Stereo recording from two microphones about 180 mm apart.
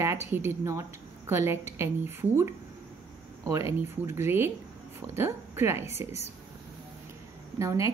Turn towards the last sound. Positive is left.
turn(degrees=-15)  # may be behind; listen again after turning